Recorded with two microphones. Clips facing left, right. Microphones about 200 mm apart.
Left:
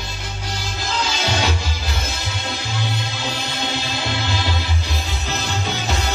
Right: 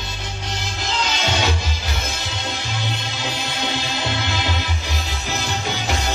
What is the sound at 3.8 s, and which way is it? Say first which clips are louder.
Music: even; 20° right (ahead or behind).